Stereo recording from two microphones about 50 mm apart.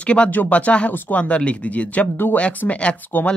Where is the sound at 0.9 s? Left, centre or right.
Left.